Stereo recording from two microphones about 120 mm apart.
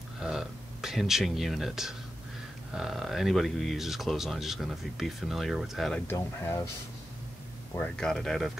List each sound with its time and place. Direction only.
0.2 s speech: 5° right (ahead or behind)
5.9 s speech: 20° left (ahead or behind)
7.7 s speech: 10° left (ahead or behind)